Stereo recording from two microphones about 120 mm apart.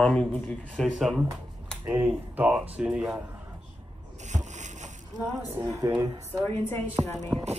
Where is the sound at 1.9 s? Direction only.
15° right (ahead or behind).